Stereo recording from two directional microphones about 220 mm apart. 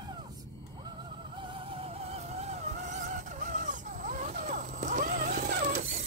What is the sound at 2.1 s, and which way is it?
Vehicle, 30° right (ahead or behind).